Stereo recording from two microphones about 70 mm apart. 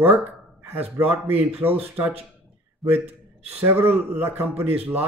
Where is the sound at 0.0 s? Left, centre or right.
Right.